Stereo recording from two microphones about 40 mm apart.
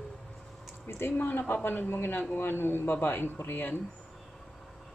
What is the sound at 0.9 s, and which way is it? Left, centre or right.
Speech, left.